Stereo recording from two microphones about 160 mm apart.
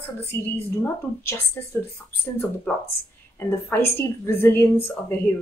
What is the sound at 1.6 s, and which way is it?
A woman's voice, 15° left (ahead or behind).